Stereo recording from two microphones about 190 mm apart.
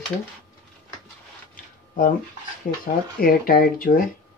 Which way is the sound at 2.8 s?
50° left (ahead or behind).